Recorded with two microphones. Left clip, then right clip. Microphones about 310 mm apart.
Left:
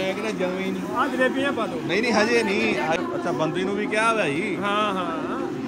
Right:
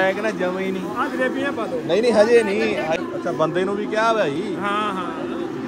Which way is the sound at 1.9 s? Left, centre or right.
Centre.